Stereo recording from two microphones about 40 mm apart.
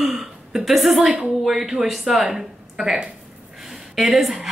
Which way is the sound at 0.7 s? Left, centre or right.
Centre.